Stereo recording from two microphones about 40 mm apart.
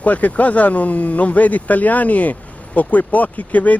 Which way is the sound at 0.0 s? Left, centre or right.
Left.